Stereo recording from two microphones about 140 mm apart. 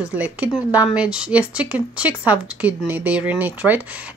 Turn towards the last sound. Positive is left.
turn(degrees=-10)  # may be behind; listen again after turning